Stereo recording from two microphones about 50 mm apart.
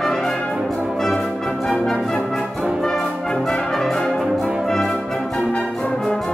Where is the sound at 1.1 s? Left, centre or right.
Left.